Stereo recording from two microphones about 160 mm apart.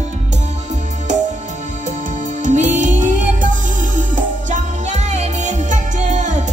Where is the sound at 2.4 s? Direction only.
50° right (ahead or behind).